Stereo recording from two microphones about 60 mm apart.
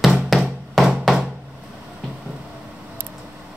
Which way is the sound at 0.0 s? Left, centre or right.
Centre.